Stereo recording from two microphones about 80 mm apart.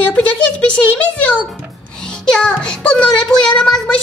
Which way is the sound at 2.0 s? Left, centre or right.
Centre.